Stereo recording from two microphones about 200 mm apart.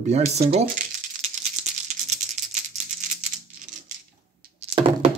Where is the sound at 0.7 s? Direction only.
45° right (ahead or behind).